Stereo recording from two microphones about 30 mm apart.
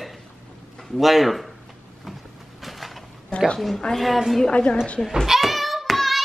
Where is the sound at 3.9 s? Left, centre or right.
Centre.